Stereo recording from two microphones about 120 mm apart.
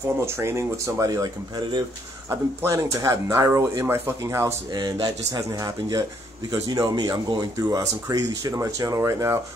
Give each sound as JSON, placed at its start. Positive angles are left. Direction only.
{"t": 0.2, "sound": "speech", "side_deg": -20}